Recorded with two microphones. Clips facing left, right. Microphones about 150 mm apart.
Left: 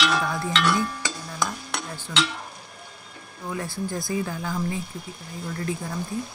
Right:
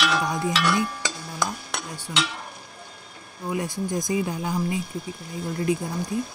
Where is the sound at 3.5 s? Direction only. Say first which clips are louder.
Right 3 dB; 20° right (ahead or behind).